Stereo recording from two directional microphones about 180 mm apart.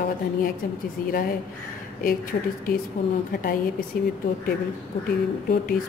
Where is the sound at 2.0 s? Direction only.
50° left (ahead or behind).